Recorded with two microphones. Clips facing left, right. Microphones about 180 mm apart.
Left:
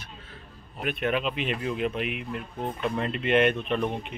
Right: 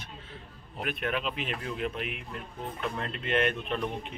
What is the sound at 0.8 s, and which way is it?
Speech, centre (ahead or behind).